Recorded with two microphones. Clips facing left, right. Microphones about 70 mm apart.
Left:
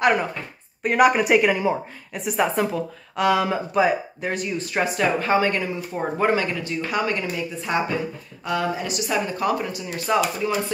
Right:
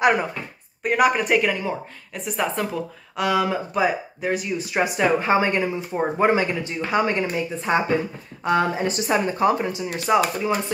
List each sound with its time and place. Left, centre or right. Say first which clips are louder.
0.0 s speech: right 1 dB; centre
0.8 s a woman's voice: left 2 dB; centre